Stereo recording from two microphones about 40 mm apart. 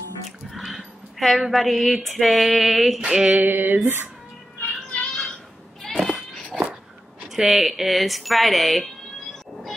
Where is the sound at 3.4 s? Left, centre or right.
Right.